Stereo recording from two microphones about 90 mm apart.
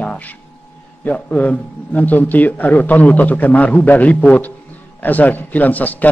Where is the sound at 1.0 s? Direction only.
15° left (ahead or behind).